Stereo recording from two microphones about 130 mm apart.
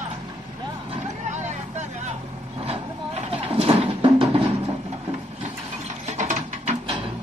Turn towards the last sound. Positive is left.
turn(degrees=-70)  # may be behind; listen again after turning